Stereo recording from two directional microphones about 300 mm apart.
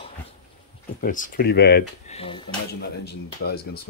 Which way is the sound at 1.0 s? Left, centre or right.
Left.